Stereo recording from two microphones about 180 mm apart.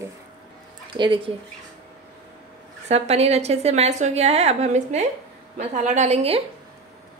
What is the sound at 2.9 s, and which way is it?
A woman's voice, 35° right (ahead or behind).